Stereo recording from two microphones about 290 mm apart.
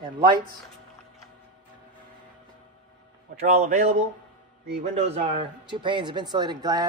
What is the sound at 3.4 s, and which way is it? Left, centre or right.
A man's voice, right.